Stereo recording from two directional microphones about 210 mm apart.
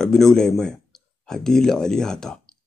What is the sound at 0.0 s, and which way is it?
Speech, centre (ahead or behind).